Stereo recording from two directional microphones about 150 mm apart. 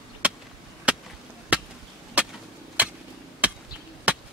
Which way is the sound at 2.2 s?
10° right (ahead or behind).